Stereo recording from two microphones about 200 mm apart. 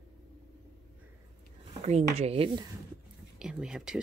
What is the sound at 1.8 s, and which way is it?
Speech, 30° right (ahead or behind).